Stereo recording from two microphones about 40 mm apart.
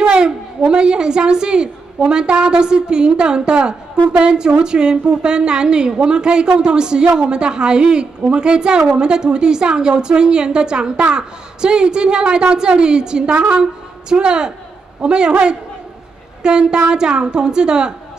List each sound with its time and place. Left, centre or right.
0.0 s a woman's voice: right
13.3 s a woman's voice: right